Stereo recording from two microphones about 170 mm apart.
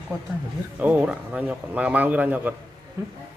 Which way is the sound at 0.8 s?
10° right (ahead or behind).